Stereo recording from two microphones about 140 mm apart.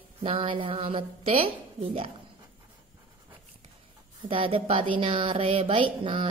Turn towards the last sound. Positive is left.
turn(degrees=-40)  # may be behind; listen again after turning